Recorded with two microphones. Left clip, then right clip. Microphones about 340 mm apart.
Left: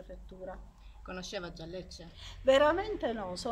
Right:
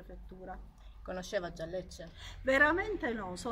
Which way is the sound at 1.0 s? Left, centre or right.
Centre.